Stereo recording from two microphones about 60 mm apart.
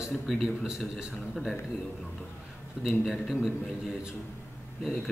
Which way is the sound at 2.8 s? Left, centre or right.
Centre.